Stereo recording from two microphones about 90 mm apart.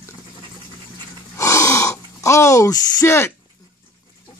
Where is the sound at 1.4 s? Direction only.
35° left (ahead or behind).